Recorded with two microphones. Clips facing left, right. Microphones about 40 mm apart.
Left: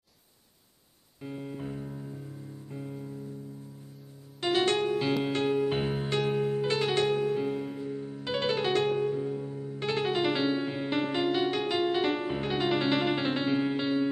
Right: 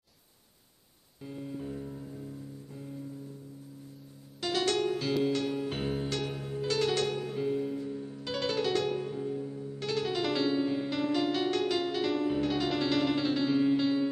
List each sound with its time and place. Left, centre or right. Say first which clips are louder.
1.2 s music: left 1 dB; left
2.7 s music: left 4 dB; left
4.4 s music: left 3 dB; left
5.6 s music: left 4 dB; left